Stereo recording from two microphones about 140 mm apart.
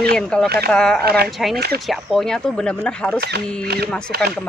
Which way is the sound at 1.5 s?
90° right.